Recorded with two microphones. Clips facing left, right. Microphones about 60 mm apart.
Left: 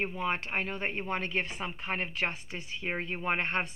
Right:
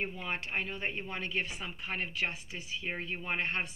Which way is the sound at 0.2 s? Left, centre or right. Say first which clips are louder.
Left 4 dB; left.